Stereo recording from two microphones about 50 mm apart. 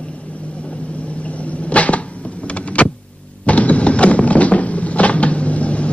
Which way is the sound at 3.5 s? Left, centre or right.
Left.